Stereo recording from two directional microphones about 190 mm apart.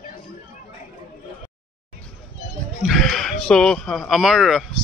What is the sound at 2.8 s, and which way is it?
Speech, centre (ahead or behind).